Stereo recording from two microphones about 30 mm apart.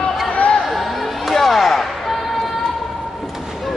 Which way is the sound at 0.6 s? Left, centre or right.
Centre.